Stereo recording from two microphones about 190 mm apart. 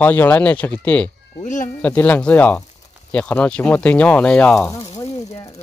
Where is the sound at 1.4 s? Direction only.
40° left (ahead or behind).